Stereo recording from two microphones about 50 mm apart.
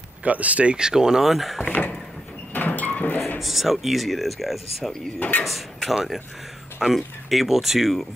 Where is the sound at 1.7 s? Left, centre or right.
Left.